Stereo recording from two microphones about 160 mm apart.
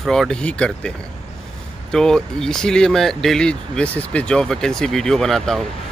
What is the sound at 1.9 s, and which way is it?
Speech, 5° left (ahead or behind).